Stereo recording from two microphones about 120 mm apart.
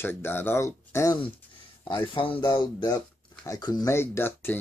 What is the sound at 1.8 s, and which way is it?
Speech, 45° left (ahead or behind).